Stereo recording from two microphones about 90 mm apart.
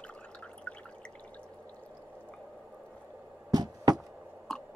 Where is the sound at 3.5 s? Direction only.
45° right (ahead or behind).